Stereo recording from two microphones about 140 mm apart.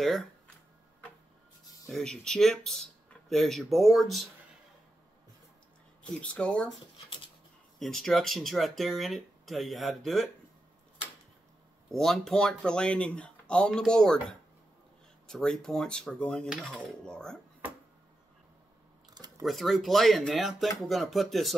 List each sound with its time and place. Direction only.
0.0 s speech: centre (ahead or behind)
1.9 s speech: 5° left (ahead or behind)
6.2 s speech: 5° left (ahead or behind)
7.8 s speech: centre (ahead or behind)
11.9 s speech: 5° left (ahead or behind)
15.2 s speech: 5° left (ahead or behind)
19.0 s a sound: 30° right (ahead or behind)
19.4 s speech: centre (ahead or behind)